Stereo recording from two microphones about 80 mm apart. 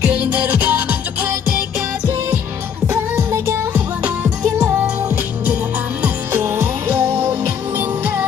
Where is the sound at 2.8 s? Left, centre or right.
Right.